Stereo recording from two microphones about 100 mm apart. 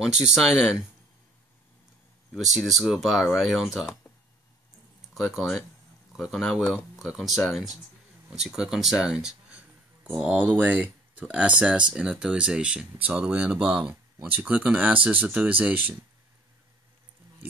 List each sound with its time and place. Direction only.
0.0 s speech: 10° right (ahead or behind)
2.3 s speech: 5° right (ahead or behind)
5.1 s speech: centre (ahead or behind)